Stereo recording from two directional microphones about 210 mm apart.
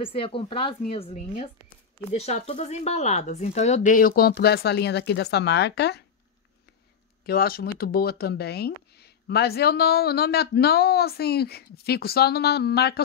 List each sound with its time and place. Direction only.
0.0 s speech: 25° left (ahead or behind); by 6.0 s 55° left (ahead or behind)
7.2 s speech: 45° left (ahead or behind)